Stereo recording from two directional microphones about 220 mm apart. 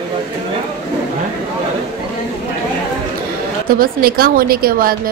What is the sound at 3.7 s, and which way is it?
A woman's voice, 40° right (ahead or behind).